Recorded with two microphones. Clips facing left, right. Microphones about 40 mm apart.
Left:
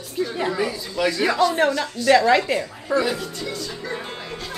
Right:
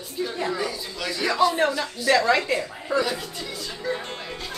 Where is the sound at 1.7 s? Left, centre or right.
Centre.